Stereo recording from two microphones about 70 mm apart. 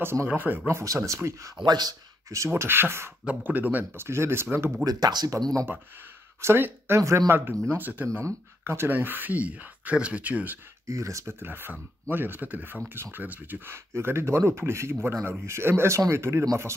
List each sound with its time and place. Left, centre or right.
0.0 s speech: right
0.3 s speech: right
0.7 s speech: right
1.7 s speech: right
2.2 s speech: right
2.5 s speech: right
3.3 s speech: right
4.8 s speech: right
6.4 s speech: right
7.0 s speech: right
7.2 s speech: right
8.2 s speech: right
10.9 s speech: right
11.3 s speech: right